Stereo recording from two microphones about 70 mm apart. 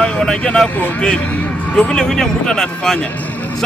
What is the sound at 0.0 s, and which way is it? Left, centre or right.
Speech, centre.